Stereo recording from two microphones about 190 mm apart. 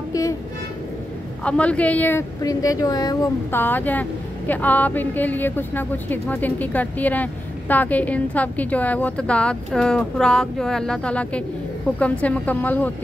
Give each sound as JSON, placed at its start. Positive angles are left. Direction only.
{"t": 0.1, "sound": "music", "side_deg": 15}
{"t": 1.4, "sound": "speech", "side_deg": 5}